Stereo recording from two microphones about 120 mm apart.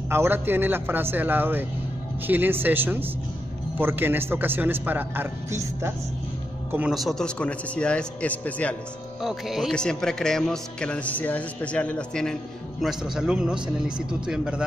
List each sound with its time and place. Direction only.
0.1 s a man's voice: 20° right (ahead or behind)
6.9 s a man's voice: centre (ahead or behind)
9.2 s a man's voice: centre (ahead or behind)
12.8 s a man's voice: 5° right (ahead or behind)